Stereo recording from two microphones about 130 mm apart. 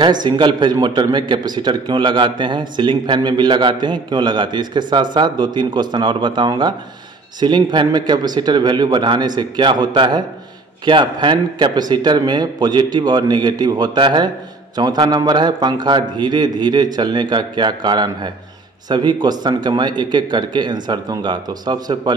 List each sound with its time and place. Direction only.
0.0 s a man's voice: 35° right (ahead or behind)